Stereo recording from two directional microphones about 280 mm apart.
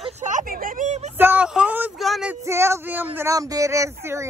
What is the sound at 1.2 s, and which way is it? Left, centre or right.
Speech, centre.